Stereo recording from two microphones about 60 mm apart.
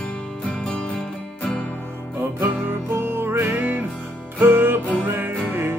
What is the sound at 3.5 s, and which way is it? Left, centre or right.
Music, right.